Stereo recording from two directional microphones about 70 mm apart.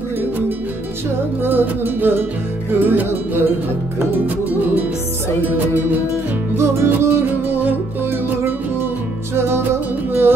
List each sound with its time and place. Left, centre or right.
1.4 s music: right
5.4 s music: right
6.5 s music: right
9.3 s music: right